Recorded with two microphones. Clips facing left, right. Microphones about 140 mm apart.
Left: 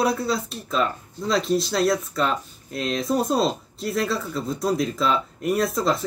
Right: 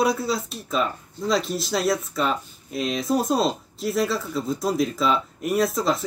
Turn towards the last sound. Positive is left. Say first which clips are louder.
# even
turn(degrees=0)  # may be behind; listen again after turning